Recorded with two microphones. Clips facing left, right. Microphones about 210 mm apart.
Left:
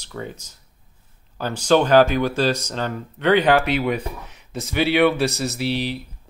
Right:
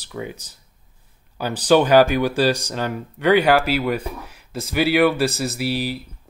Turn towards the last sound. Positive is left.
turn(degrees=-5)  # may be behind; listen again after turning